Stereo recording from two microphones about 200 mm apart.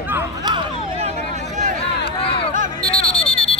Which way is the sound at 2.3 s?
25° left (ahead or behind).